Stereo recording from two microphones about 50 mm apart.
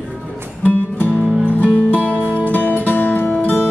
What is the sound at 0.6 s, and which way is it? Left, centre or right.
Music, left.